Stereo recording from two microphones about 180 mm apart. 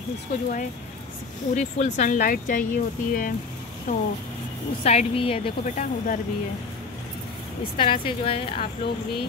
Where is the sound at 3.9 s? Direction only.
45° left (ahead or behind).